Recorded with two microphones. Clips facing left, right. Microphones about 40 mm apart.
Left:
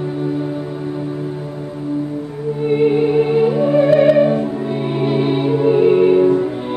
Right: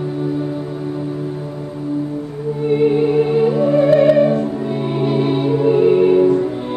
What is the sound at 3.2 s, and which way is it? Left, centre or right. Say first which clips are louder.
Music: even; centre.